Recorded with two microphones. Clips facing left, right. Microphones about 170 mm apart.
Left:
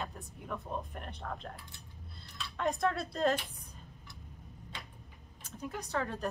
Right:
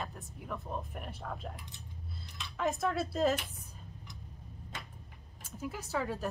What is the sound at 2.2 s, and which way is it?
Dishes, 20° right (ahead or behind).